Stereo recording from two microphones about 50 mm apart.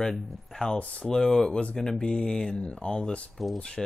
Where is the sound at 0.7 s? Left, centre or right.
Left.